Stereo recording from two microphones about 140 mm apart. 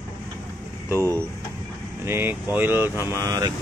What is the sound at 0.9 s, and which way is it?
Speech, 20° right (ahead or behind).